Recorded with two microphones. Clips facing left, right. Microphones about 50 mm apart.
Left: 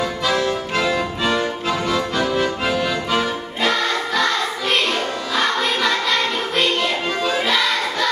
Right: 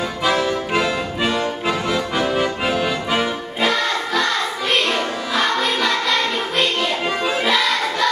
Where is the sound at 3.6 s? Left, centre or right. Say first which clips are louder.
Even; centre.